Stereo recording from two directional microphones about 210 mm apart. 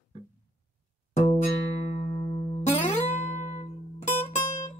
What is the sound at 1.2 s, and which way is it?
Music, 30° left (ahead or behind).